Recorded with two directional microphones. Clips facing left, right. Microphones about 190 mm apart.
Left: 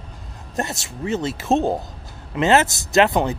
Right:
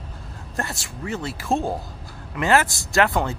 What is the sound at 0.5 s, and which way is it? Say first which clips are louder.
Speech: left 4 dB; 20° left (ahead or behind).